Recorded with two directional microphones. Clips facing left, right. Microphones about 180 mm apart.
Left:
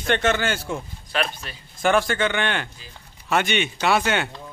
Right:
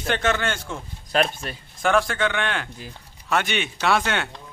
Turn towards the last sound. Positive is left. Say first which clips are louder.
# left 1 dB
turn(degrees=0)  # may be behind; listen again after turning